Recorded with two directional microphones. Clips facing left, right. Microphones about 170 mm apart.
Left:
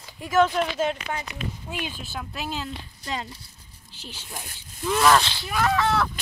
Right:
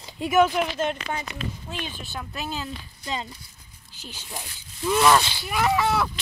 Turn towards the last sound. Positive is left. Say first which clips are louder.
# even
turn(degrees=-5)  # may be behind; listen again after turning